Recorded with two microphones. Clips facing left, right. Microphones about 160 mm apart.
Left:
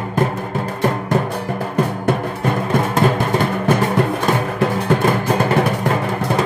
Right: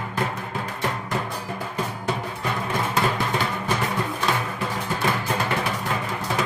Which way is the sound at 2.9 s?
50° left (ahead or behind).